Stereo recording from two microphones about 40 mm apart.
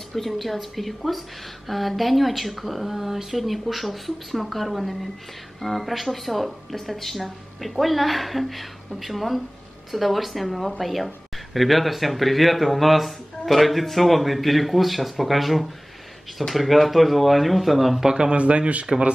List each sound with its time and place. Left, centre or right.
0.1 s speech: centre
18.0 s speech: centre
18.3 s speech: right